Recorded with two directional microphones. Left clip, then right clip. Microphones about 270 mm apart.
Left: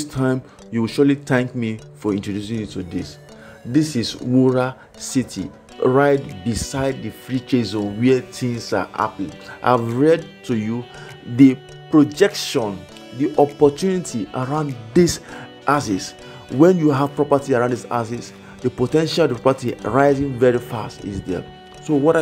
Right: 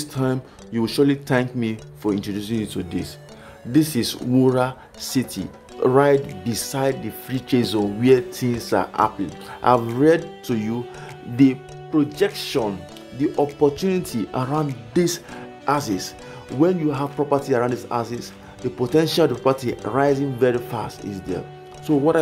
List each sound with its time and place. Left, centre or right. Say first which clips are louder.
0.0 s speech: left 3 dB; centre
13.9 s speech: even; centre
15.0 s speech: left 5 dB; centre
16.6 s speech: left 6 dB; left; by 22.2 s centre